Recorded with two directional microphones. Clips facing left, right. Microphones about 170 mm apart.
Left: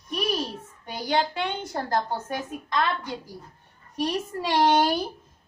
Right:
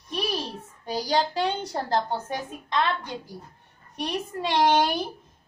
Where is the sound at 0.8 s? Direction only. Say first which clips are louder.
Right 1 dB; 35° right (ahead or behind).